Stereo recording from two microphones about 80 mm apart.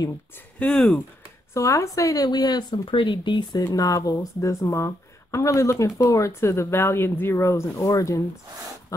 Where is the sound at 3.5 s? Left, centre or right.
Left.